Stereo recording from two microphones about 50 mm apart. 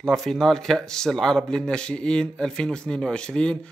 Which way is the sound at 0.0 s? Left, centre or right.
Centre.